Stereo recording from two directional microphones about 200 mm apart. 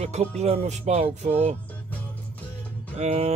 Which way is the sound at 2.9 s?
35° right (ahead or behind).